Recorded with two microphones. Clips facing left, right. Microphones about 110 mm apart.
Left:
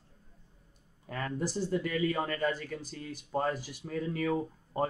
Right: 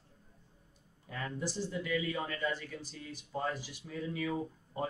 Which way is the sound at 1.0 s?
50° left (ahead or behind).